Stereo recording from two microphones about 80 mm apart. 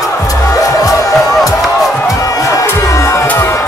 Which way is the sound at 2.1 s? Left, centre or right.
Left.